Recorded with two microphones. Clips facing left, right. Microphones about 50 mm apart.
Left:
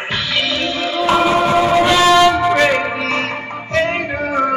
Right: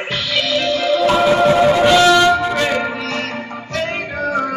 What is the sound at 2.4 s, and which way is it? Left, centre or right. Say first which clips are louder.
Music: left 4 dB; left.